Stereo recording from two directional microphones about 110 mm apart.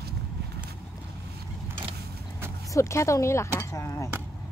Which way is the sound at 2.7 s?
25° left (ahead or behind).